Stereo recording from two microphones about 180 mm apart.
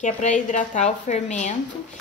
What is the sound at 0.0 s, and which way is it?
A woman's voice, 40° left (ahead or behind).